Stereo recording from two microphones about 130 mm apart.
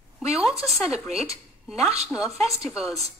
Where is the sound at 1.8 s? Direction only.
55° right (ahead or behind).